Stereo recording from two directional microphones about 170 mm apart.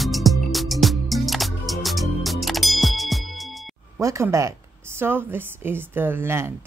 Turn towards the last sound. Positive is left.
turn(degrees=-15)  # may be behind; listen again after turning